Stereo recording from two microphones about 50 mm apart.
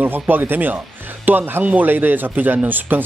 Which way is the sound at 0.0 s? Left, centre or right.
Right.